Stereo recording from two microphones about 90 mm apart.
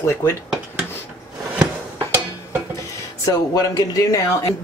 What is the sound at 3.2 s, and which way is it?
Speech, 40° left (ahead or behind).